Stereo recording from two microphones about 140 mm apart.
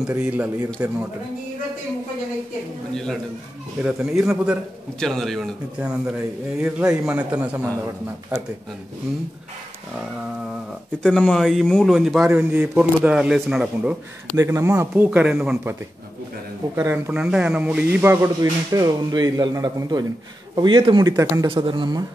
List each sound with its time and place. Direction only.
0.1 s speech: 10° right (ahead or behind)
2.9 s speech: 5° left (ahead or behind)
3.8 s speech: 5° right (ahead or behind)
11.0 s speech: 5° left (ahead or behind)
14.3 s a man's voice: 25° right (ahead or behind)
14.8 s speech: 10° right (ahead or behind)
16.7 s speech: 15° right (ahead or behind)
17.1 s speech: 5° right (ahead or behind)
18.2 s a man's voice: 25° right (ahead or behind)